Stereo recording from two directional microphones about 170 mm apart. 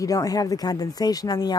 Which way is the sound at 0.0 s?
20° left (ahead or behind).